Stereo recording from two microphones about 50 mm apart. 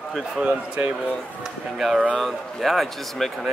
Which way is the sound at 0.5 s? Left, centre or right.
Right.